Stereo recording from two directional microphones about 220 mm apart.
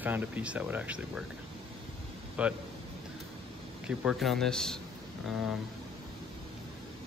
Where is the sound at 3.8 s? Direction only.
Centre (ahead or behind).